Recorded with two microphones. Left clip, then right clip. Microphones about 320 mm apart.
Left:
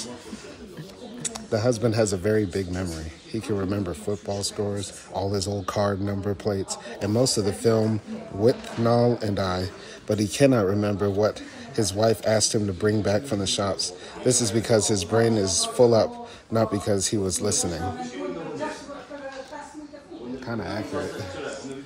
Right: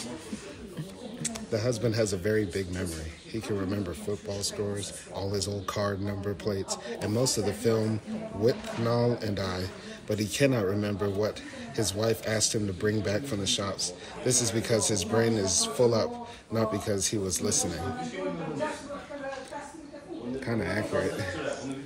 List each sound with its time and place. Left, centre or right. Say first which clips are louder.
1.2 s a man's voice: left 6 dB; left